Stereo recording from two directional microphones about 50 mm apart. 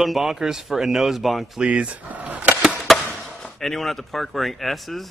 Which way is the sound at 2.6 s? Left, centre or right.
Centre.